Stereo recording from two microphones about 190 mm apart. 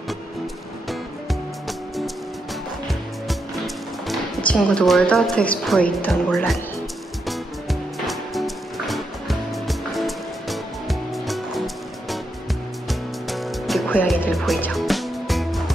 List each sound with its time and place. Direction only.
0.8 s music: centre (ahead or behind)
4.5 s a woman's voice: 5° left (ahead or behind)
8.1 s music: centre (ahead or behind)
13.3 s music: centre (ahead or behind)